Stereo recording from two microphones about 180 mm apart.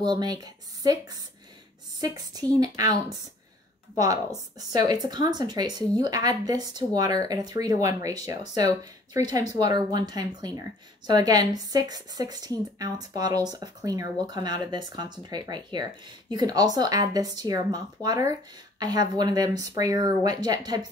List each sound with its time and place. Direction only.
0.0 s speech: 25° right (ahead or behind)
2.0 s speech: 20° right (ahead or behind)